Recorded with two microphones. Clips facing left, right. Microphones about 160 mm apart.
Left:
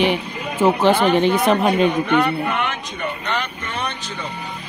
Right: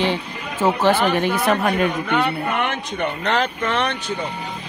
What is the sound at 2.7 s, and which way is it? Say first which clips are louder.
Speech: right 3 dB; 80° right.